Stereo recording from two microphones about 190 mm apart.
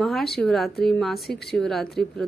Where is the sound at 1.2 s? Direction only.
60° left (ahead or behind).